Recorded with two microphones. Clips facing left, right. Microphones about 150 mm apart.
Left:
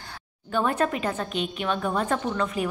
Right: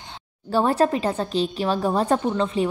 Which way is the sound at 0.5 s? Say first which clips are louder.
Right 5 dB; 35° right (ahead or behind).